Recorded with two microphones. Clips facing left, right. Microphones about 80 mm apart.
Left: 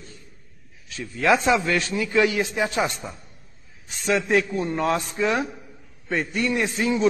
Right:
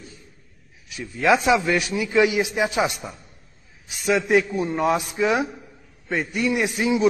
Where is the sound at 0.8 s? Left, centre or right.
Centre.